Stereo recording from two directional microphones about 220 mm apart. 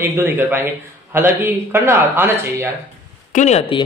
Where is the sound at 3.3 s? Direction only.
30° left (ahead or behind).